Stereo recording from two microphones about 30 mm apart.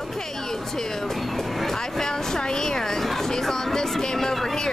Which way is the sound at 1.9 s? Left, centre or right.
Centre.